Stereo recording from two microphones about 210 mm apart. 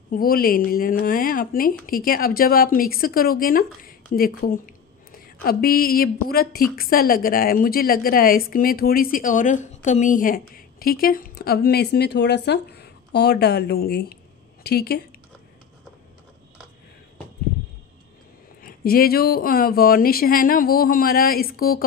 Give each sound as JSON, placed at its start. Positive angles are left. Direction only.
{"t": 0.1, "sound": "a woman's voice", "side_deg": 45}
{"t": 18.6, "sound": "a woman's voice", "side_deg": 45}